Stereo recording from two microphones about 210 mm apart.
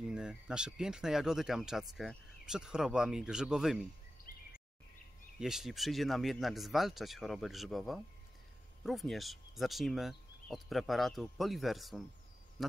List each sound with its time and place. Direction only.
0.0 s speech: 5° right (ahead or behind)
4.3 s a sound: 40° left (ahead or behind)
5.4 s speech: centre (ahead or behind)